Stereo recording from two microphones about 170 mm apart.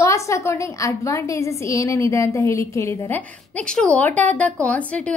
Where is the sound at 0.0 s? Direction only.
15° left (ahead or behind).